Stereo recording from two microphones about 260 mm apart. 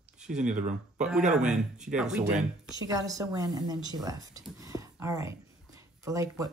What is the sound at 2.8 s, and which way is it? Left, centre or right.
Speech, centre.